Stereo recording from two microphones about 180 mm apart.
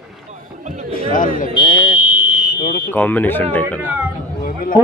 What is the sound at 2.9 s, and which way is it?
Speech, 10° left (ahead or behind).